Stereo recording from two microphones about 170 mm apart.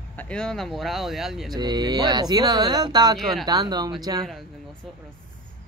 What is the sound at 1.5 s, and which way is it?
Speech, 25° right (ahead or behind).